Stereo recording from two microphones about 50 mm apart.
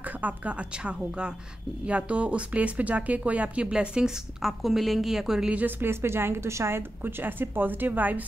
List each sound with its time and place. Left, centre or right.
0.2 s speech: right
4.4 s a woman's voice: centre
5.8 s a woman's voice: right
7.0 s a woman's voice: right